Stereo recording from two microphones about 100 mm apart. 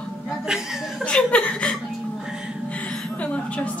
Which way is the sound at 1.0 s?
10° left (ahead or behind).